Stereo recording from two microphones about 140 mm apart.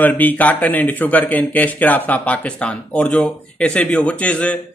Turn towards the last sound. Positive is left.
turn(degrees=10)  # may be behind; listen again after turning